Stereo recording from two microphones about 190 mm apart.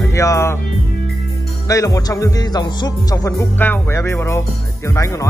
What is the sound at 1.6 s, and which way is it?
Speech, 15° left (ahead or behind).